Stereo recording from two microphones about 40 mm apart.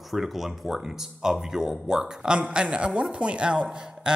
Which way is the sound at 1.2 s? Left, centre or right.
Centre.